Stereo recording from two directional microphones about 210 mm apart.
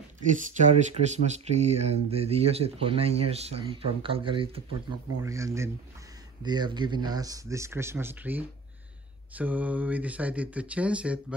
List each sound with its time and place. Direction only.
0.3 s speech: 35° right (ahead or behind); by 11.3 s 5° right (ahead or behind)